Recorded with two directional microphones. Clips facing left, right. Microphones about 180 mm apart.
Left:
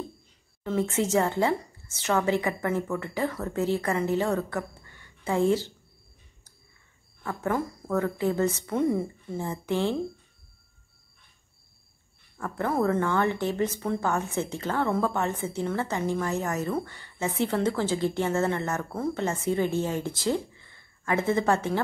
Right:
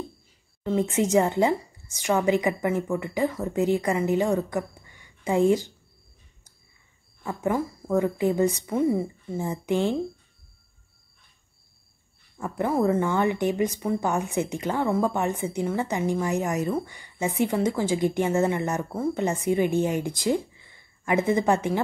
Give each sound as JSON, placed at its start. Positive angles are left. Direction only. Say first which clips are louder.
{"t": 0.7, "sound": "a woman's voice", "louder": "right 3 dB", "side_deg": -15}
{"t": 7.2, "sound": "a woman's voice", "louder": "right 2 dB", "side_deg": -10}
{"t": 12.4, "sound": "a woman's voice", "louder": "right 2 dB", "side_deg": -15}